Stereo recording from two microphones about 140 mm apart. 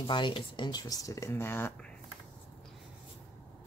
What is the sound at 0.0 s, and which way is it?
Speech, 35° left (ahead or behind).